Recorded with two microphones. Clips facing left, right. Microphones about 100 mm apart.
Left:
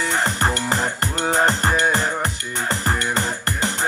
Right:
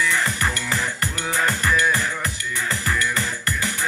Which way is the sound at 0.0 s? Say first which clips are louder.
Left 2 dB; 50° left (ahead or behind).